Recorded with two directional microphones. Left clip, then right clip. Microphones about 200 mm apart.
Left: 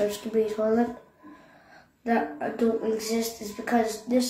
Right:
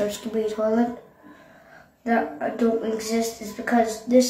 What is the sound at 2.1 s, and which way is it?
Speech, 5° left (ahead or behind).